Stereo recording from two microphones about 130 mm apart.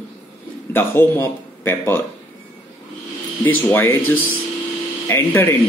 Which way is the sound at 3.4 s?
15° left (ahead or behind).